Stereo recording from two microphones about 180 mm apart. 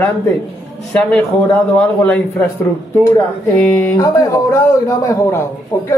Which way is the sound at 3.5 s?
5° left (ahead or behind).